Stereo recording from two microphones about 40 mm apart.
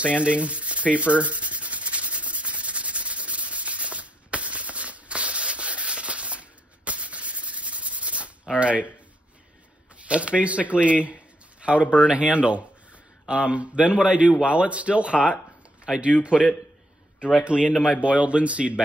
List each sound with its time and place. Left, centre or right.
0.0 s speech: right
0.9 s sanding: right
8.5 s speech: right
10.0 s speech: right
17.5 s speech: right